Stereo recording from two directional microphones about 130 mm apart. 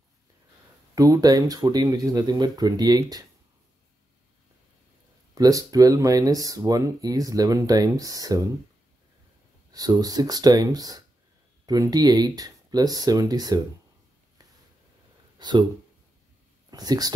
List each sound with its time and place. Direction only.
0.9 s speech: 30° right (ahead or behind)
5.3 s speech: 30° right (ahead or behind)
9.7 s speech: 30° right (ahead or behind)
15.3 s a sound: 35° right (ahead or behind)
16.7 s speech: 30° right (ahead or behind)